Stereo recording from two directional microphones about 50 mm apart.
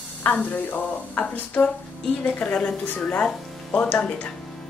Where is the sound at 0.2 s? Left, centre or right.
Left.